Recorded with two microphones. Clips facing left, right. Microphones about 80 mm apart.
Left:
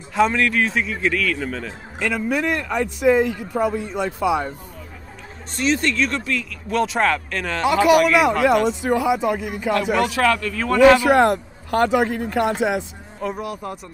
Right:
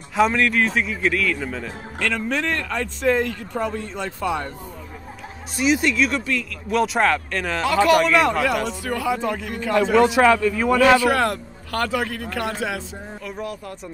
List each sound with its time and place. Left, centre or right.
0.1 s speech: centre
2.0 s speech: centre
5.6 s speech: centre
7.6 s speech: centre
8.8 s speech: centre
9.9 s a man's voice: centre
11.0 s a man's voice: left
13.4 s speech: centre